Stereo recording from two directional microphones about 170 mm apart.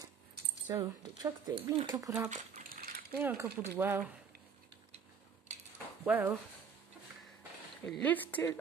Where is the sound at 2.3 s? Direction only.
60° right (ahead or behind).